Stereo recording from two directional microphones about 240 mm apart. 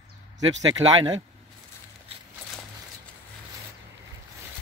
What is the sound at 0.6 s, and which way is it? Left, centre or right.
Speech, centre.